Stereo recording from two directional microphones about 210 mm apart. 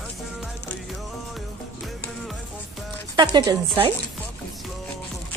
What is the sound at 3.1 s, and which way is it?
Speech, 20° right (ahead or behind).